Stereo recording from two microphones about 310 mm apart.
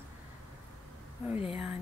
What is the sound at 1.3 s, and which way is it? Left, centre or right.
Speech, centre.